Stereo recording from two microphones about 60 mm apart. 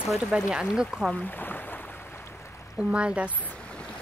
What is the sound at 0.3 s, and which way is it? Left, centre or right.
Speech, centre.